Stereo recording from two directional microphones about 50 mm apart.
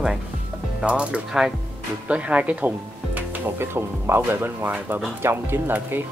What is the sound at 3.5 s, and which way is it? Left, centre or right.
Speech, right.